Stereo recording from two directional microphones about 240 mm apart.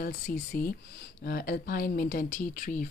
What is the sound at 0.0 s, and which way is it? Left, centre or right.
Speech, left.